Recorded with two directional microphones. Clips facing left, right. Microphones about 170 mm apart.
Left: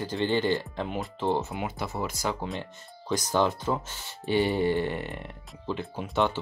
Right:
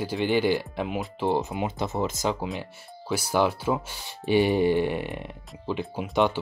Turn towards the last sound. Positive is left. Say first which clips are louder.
# right 3 dB
turn(degrees=-15)  # may be behind; listen again after turning